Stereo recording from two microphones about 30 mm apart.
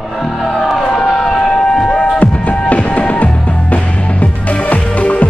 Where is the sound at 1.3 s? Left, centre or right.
Left.